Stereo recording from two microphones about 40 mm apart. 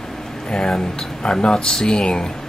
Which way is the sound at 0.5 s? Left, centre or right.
Centre.